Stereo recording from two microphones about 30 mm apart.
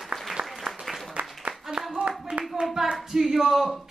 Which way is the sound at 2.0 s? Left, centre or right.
Right.